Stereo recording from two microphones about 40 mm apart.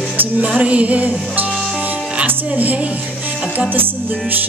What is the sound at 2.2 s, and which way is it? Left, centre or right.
Speech, right.